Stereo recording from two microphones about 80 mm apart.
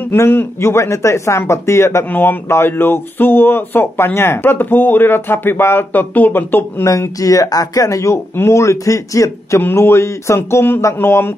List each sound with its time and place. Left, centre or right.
0.1 s speech: left
6.9 s speech: left
9.6 s speech: left